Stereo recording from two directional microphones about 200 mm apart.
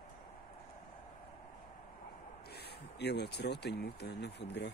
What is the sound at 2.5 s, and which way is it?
Speech, 55° left (ahead or behind).